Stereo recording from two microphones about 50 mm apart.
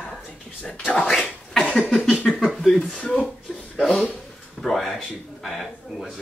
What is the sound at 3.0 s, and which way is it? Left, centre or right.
Speech, centre.